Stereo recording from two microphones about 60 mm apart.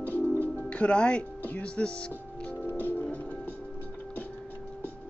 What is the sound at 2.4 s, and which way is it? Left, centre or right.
Music, centre.